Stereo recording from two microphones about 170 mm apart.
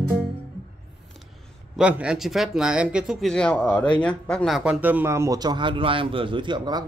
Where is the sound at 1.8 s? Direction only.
5° right (ahead or behind).